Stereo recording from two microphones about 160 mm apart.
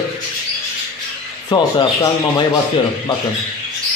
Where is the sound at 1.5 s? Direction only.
25° left (ahead or behind).